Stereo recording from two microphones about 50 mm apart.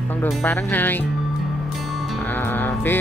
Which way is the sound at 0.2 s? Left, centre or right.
Left.